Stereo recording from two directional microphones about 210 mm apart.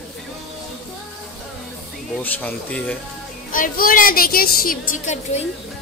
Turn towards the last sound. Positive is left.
turn(degrees=35)  # may be behind; listen again after turning